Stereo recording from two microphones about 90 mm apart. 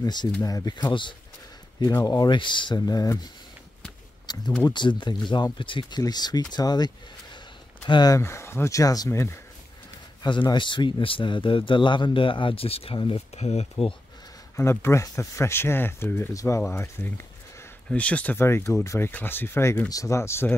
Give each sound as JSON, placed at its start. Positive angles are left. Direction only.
{"t": 0.0, "sound": "speech", "side_deg": 55}
{"t": 1.9, "sound": "speech", "side_deg": 45}
{"t": 2.3, "sound": "speech", "side_deg": 60}
{"t": 2.8, "sound": "speech", "side_deg": 45}
{"t": 4.3, "sound": "speech", "side_deg": 50}
{"t": 5.9, "sound": "speech", "side_deg": 50}
{"t": 8.2, "sound": "speech", "side_deg": 30}
{"t": 10.2, "sound": "a man's voice", "side_deg": 60}
{"t": 14.6, "sound": "speech", "side_deg": 30}
{"t": 17.8, "sound": "speech", "side_deg": 15}
{"t": 18.4, "sound": "speech", "side_deg": 30}